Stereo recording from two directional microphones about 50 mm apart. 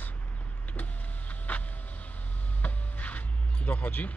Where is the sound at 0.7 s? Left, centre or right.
Left.